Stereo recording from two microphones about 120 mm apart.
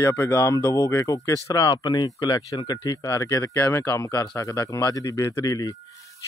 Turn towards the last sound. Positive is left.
turn(degrees=30)  # may be behind; listen again after turning